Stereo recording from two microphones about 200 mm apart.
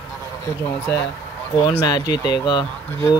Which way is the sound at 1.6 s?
20° left (ahead or behind).